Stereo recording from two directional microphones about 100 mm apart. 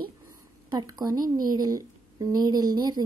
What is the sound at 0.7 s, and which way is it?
A woman's voice, 40° right (ahead or behind).